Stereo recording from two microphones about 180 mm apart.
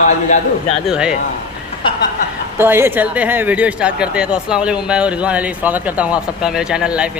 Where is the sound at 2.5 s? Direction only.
15° right (ahead or behind).